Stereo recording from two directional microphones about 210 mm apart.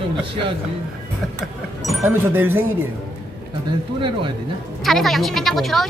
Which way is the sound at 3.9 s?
20° right (ahead or behind).